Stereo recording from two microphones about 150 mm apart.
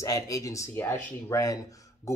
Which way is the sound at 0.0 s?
20° left (ahead or behind).